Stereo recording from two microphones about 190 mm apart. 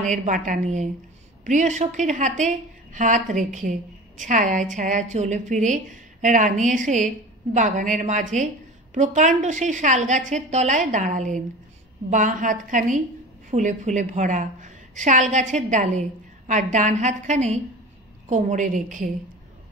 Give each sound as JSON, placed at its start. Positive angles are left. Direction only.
{"t": 0.0, "sound": "a woman's voice", "side_deg": -40}